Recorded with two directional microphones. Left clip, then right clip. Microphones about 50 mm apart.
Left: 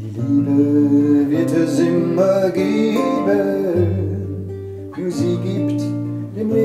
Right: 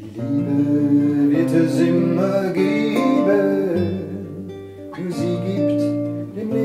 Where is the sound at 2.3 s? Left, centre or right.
Left.